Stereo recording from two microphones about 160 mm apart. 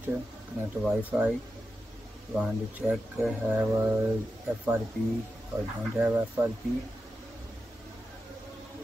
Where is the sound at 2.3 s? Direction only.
10° right (ahead or behind).